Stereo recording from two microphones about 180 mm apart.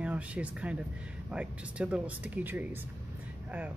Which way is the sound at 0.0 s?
5° right (ahead or behind).